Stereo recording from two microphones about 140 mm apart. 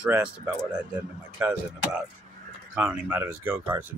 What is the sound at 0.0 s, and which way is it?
Speech, 10° right (ahead or behind).